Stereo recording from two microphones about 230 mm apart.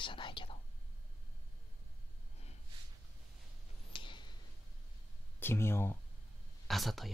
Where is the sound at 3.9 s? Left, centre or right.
Left.